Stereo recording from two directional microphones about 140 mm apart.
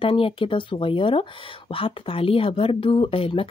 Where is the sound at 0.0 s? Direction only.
40° left (ahead or behind).